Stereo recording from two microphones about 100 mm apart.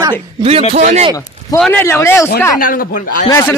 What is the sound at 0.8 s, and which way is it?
Speech, 90° right.